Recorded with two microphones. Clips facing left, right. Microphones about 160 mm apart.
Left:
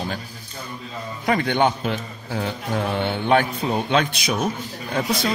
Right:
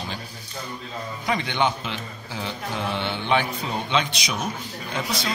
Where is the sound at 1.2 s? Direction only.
50° left (ahead or behind).